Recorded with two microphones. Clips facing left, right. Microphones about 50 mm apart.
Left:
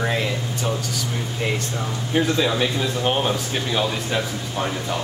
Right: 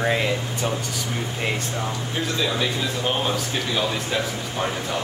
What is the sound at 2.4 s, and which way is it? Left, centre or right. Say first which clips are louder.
Speech: left 3 dB; centre.